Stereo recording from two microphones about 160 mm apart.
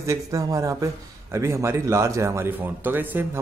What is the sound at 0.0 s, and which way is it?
Speech, 20° right (ahead or behind).